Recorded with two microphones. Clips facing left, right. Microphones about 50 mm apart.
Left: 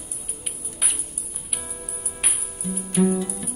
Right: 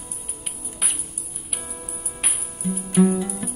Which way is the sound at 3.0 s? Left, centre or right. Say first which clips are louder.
Right 2 dB; centre.